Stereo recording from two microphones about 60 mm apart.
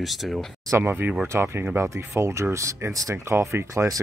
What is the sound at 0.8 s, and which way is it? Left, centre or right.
Speech, right.